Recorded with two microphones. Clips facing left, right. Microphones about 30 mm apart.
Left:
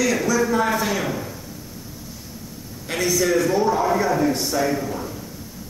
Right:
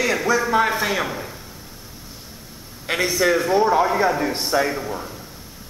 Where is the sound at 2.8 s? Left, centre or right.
Right.